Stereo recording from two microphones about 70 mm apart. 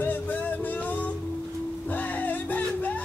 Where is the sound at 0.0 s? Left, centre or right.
Left.